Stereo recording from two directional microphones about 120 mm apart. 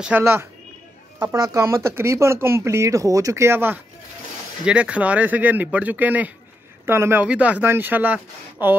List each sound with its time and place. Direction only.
0.2 s speech: 20° right (ahead or behind)